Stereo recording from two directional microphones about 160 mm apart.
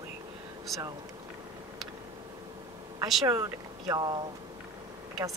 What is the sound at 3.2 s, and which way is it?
Speech, 20° right (ahead or behind).